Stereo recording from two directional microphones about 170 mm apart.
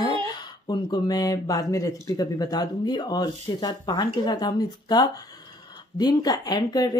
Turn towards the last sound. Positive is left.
turn(degrees=25)  # may be behind; listen again after turning